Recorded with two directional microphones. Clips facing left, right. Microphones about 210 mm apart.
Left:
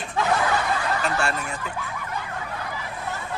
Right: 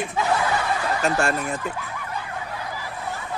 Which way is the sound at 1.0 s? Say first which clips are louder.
Right 3 dB; 45° right (ahead or behind).